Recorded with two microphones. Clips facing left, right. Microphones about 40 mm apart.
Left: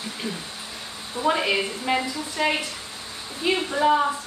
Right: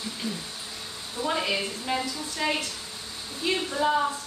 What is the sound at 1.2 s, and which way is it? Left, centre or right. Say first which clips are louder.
Speech: left 5 dB; left.